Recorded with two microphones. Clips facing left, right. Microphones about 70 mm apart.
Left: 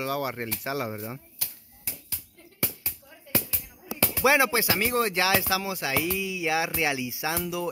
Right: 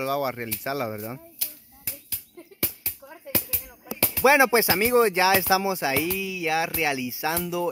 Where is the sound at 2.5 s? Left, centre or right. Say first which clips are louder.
Even; centre.